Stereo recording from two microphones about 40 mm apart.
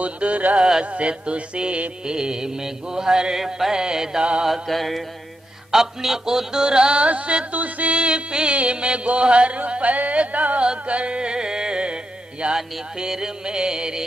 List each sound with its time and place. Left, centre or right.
0.0 s music: right
0.6 s music: centre
0.9 s music: right
4.5 s music: centre
5.7 s music: centre; by 7.9 s right
7.9 s music: right
12.5 s music: centre